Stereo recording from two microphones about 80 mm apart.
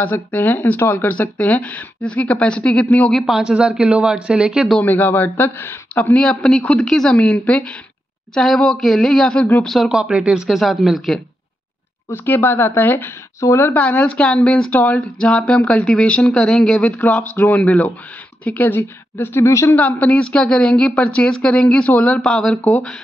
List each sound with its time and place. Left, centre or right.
0.0 s a woman's voice: left
3.1 s speech: centre
3.3 s speech: centre
4.8 s a woman's voice: left
6.1 s speech: centre
9.8 s speech: centre
12.1 s a woman's voice: left
13.7 s a woman's voice: centre; by 19.7 s left
19.7 s speech: centre